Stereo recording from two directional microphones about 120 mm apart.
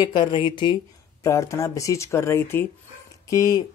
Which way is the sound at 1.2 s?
25° left (ahead or behind).